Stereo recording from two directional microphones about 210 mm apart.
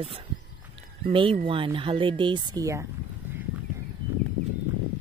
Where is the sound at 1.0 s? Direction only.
25° right (ahead or behind).